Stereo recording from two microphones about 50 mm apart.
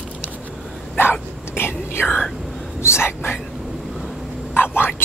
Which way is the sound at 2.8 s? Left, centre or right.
Left.